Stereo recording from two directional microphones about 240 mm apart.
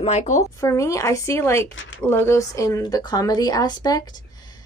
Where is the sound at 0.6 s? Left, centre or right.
Centre.